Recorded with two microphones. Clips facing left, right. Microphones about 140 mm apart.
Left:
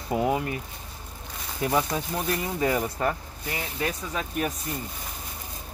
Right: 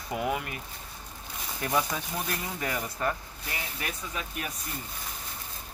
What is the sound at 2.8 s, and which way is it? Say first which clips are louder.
Speech: left 4 dB; 35° left (ahead or behind).